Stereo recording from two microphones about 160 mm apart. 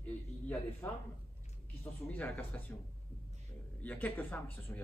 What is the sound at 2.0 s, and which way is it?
Speech, 10° left (ahead or behind).